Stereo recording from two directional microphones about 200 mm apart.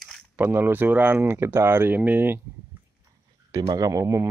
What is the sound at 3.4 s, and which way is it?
Speech, 20° right (ahead or behind).